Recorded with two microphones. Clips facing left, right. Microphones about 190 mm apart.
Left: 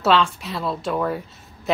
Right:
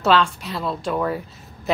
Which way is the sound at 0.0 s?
Centre (ahead or behind).